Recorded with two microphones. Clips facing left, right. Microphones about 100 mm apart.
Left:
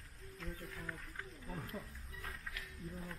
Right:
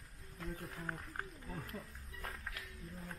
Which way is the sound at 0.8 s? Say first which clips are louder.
Right 3 dB; 45° right (ahead or behind).